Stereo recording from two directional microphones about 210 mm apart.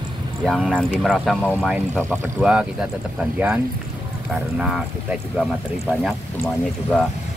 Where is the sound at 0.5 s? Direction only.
Centre (ahead or behind).